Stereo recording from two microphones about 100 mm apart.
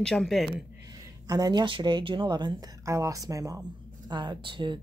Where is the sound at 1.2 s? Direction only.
40° right (ahead or behind).